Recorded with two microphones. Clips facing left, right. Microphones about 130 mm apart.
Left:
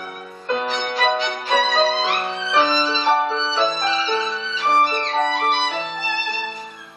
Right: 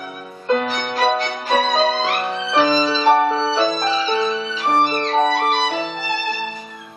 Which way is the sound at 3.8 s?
45° right (ahead or behind).